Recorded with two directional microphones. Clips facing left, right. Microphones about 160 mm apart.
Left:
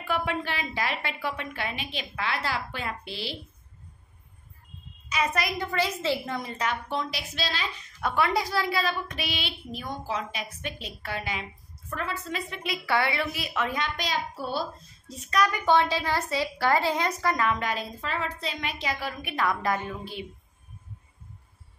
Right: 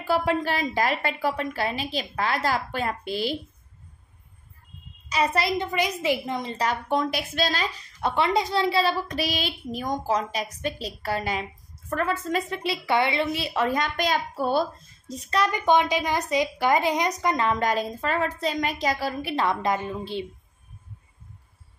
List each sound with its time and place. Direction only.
0.0 s a woman's voice: 35° right (ahead or behind)
5.1 s a woman's voice: 30° right (ahead or behind)
5.7 s a woman's voice: 15° right (ahead or behind)
6.6 s a woman's voice: 45° right (ahead or behind)
8.0 s a woman's voice: 25° right (ahead or behind); by 11.4 s 40° right (ahead or behind)
11.9 s a woman's voice: 50° right (ahead or behind)
15.1 s a woman's voice: 30° right (ahead or behind)
17.5 s a woman's voice: 40° right (ahead or behind)